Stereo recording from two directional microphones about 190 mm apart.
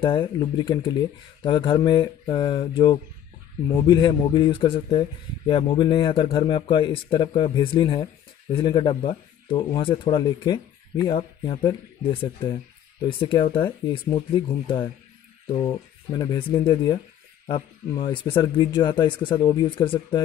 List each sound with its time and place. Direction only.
0.0 s speech: 25° left (ahead or behind)